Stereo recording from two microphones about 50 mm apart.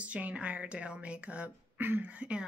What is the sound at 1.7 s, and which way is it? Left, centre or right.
Speech, right.